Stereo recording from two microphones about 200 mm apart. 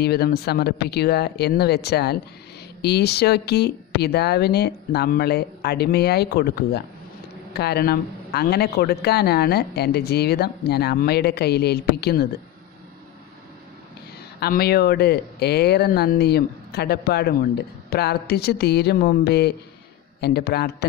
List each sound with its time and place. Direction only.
0.0 s a man's voice: 50° left (ahead or behind)
14.4 s a man's voice: 50° left (ahead or behind)